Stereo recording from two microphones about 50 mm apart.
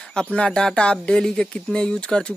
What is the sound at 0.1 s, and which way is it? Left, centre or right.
Speech, centre.